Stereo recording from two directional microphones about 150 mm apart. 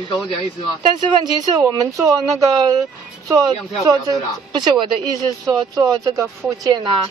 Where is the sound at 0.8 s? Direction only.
25° right (ahead or behind).